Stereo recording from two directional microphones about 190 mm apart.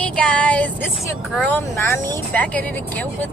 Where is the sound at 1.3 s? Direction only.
10° left (ahead or behind).